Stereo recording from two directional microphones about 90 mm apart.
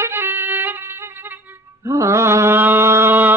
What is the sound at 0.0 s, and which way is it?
Music, 25° right (ahead or behind).